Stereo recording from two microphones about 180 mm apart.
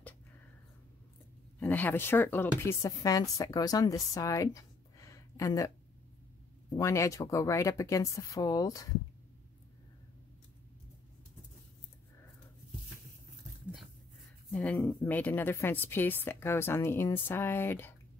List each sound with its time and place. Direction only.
1.6 s a woman's voice: 10° left (ahead or behind)
6.8 s a woman's voice: 15° left (ahead or behind)
14.5 s a woman's voice: 5° left (ahead or behind)